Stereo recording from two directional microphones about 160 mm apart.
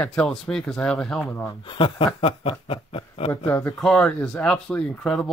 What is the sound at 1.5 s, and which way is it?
Speech, 30° left (ahead or behind).